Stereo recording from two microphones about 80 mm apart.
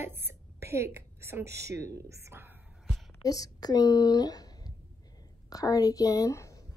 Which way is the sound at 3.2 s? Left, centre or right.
Left.